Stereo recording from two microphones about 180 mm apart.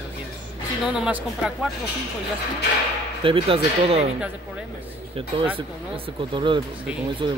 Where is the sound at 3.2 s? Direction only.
30° right (ahead or behind).